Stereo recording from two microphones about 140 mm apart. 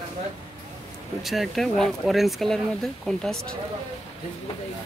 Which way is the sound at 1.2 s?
Centre (ahead or behind).